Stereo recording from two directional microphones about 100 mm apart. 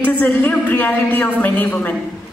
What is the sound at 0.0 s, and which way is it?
A man's voice, 20° left (ahead or behind).